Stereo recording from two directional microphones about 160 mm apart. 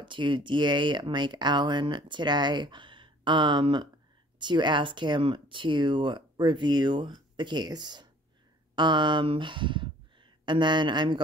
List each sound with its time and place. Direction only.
0.0 s speech: 30° right (ahead or behind)